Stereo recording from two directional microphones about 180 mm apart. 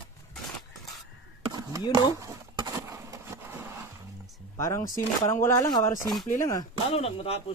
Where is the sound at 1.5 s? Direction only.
20° right (ahead or behind).